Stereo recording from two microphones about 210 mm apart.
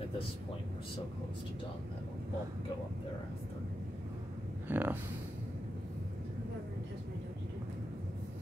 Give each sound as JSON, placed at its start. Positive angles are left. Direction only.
{"t": 4.6, "sound": "speech", "side_deg": -10}